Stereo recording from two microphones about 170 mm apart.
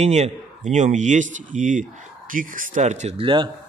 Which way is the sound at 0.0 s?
40° right (ahead or behind).